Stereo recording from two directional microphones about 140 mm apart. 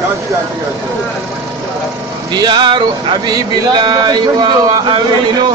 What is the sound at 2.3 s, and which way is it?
Speech, 30° right (ahead or behind).